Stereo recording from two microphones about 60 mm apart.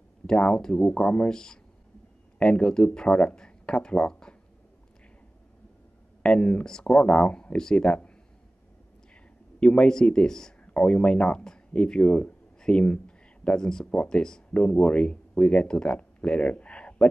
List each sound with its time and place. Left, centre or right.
0.3 s speech: centre
6.2 s speech: centre
9.6 s speech: centre
10.6 s speech: left